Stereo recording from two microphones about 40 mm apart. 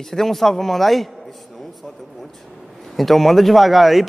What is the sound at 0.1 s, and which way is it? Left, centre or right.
Speech, centre.